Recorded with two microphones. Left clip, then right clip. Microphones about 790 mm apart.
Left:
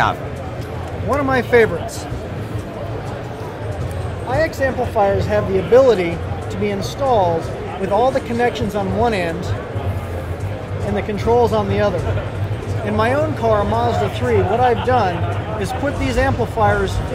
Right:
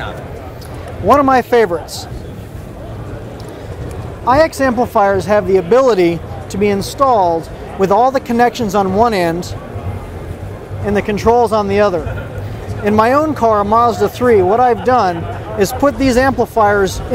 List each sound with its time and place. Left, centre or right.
1.1 s speech: right
4.3 s speech: right
11.0 s speech: right
12.9 s speech: right